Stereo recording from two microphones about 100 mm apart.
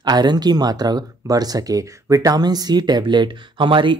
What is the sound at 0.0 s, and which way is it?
Speech, 45° right (ahead or behind).